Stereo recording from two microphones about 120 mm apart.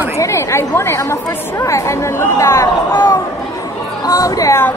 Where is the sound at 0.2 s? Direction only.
25° left (ahead or behind).